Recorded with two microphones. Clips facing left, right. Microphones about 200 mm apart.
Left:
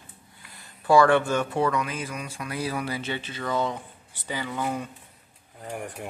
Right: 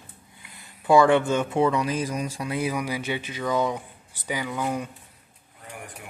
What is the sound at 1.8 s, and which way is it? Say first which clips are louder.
Speech: right 5 dB; 35° right (ahead or behind).